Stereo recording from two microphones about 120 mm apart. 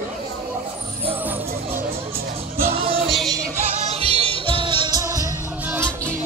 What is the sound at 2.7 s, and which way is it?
Music, 50° right (ahead or behind).